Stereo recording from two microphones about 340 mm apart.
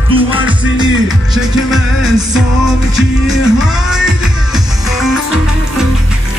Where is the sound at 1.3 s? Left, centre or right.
Centre.